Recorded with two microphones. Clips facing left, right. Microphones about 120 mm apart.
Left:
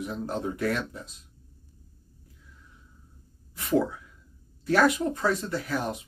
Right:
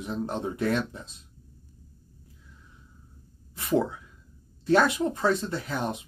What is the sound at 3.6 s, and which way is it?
Speech, 25° right (ahead or behind).